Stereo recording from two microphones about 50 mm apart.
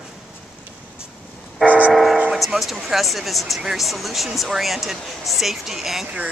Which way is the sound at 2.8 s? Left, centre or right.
Centre.